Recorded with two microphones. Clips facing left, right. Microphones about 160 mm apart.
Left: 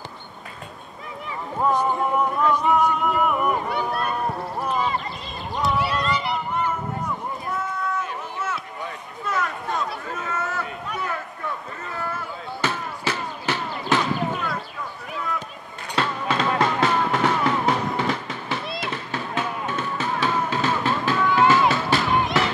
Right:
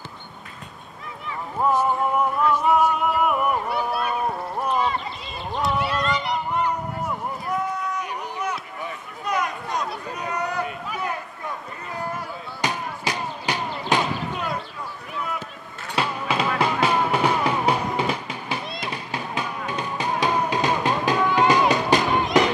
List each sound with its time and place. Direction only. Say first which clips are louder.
1.6 s music: right 1 dB; 5° right (ahead or behind)
5.6 s a sound: left 1 dB; centre (ahead or behind)
7.5 s run: right 1 dB; 15° right (ahead or behind)
9.2 s a sound: right 1 dB; 15° right (ahead or behind)
12.6 s basketball bounce: even; 15° right (ahead or behind)
15.9 s music: even; 10° right (ahead or behind)